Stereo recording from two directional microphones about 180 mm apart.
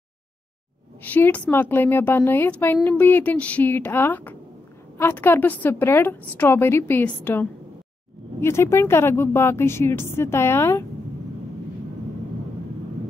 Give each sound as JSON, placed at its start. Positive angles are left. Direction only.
{"t": 1.0, "sound": "a woman's voice", "side_deg": 10}